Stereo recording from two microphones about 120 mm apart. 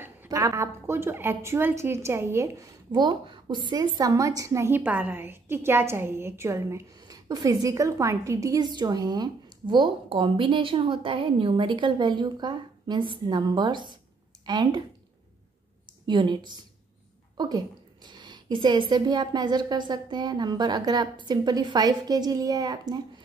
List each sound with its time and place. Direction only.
0.0 s a sound: 15° right (ahead or behind)
0.4 s a woman's voice: 25° right (ahead or behind)
16.1 s a woman's voice: 40° right (ahead or behind)
18.0 s a woman's voice: 35° right (ahead or behind)